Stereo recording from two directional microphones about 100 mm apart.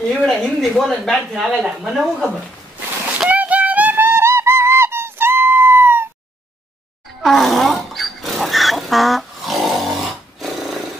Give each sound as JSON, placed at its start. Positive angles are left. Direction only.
{"t": 0.0, "sound": "speech", "side_deg": 5}
{"t": 3.2, "sound": "music", "side_deg": -15}
{"t": 7.2, "sound": "a sound", "side_deg": 0}